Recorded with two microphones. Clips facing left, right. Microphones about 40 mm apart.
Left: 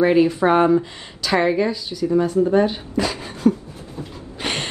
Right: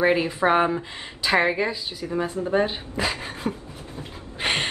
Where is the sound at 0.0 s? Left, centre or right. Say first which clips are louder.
Left 5 dB; centre.